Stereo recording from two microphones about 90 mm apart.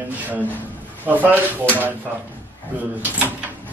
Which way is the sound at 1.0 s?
20° right (ahead or behind).